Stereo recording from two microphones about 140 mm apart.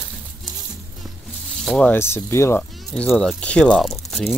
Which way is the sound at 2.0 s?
20° left (ahead or behind).